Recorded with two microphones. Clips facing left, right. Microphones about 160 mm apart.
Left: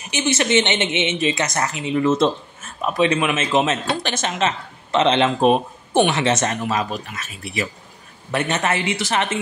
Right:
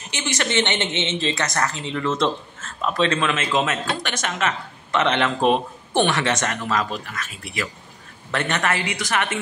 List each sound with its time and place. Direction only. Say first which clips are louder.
0.1 s a woman's voice: left 6 dB; 20° left (ahead or behind)